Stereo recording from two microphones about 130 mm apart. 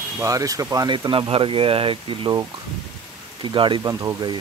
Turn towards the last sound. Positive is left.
turn(degrees=-35)  # may be behind; listen again after turning